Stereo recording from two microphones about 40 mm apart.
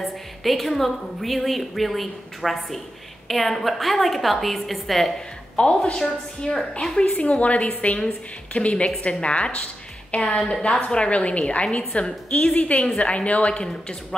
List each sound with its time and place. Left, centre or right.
0.0 s a woman's voice: centre
5.6 s a woman's voice: left
12.5 s a woman's voice: left
12.8 s a woman's voice: left